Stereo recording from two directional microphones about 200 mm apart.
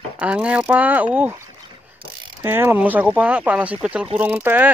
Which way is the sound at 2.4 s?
10° right (ahead or behind).